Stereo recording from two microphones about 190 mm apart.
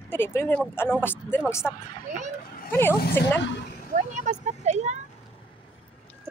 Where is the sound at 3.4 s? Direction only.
65° left (ahead or behind).